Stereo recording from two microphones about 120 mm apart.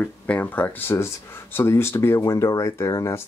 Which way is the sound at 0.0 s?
15° left (ahead or behind).